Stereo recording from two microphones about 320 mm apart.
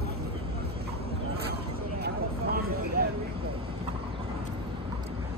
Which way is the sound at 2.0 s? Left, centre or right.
Right.